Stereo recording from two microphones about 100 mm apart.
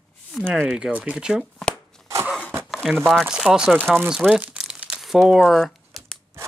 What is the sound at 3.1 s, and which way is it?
Speech, 5° right (ahead or behind).